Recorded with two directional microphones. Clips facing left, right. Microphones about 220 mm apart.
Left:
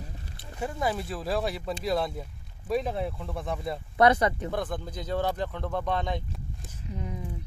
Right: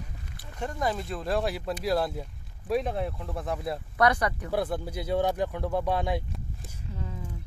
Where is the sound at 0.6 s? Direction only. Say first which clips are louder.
Even; 5° left (ahead or behind).